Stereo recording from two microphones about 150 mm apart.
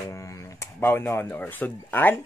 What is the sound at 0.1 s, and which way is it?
A man's voice, 20° left (ahead or behind).